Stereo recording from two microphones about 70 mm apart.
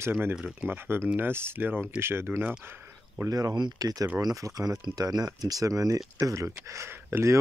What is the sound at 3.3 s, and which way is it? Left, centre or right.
Speech, right.